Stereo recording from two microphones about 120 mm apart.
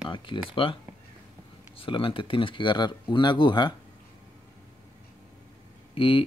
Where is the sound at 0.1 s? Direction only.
45° left (ahead or behind).